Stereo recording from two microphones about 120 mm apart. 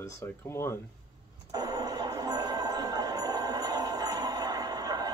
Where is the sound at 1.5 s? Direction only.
30° right (ahead or behind).